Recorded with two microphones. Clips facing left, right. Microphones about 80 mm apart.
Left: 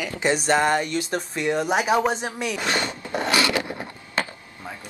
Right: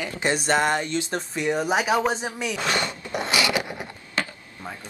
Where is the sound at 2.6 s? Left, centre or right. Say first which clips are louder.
Right 1 dB; left.